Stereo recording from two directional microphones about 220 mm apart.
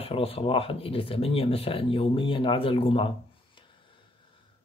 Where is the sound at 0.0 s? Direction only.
25° left (ahead or behind).